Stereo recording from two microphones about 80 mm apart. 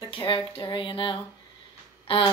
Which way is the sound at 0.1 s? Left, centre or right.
Left.